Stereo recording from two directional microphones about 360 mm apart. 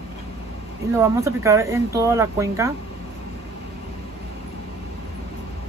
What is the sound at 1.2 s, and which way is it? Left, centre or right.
Speech, centre.